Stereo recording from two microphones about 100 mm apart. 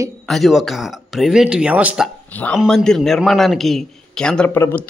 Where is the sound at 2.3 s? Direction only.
15° left (ahead or behind).